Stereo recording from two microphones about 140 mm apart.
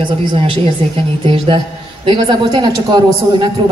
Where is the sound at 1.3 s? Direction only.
40° right (ahead or behind).